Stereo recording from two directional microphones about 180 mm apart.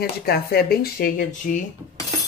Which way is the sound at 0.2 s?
60° left (ahead or behind).